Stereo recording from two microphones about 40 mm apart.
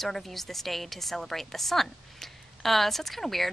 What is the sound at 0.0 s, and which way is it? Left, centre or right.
A woman's voice, centre.